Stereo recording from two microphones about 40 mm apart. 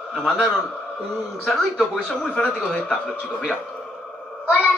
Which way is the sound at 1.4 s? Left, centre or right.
Centre.